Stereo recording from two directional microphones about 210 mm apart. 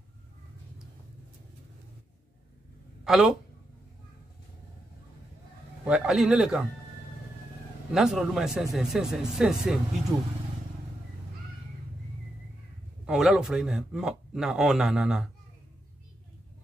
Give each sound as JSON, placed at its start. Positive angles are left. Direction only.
{"t": 3.0, "sound": "speech", "side_deg": 0}
{"t": 5.9, "sound": "a man's voice", "side_deg": -5}
{"t": 7.9, "sound": "a man's voice", "side_deg": 0}
{"t": 13.0, "sound": "a man's voice", "side_deg": 0}